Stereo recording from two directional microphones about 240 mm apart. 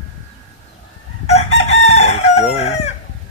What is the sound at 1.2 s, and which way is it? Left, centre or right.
Chicken, left.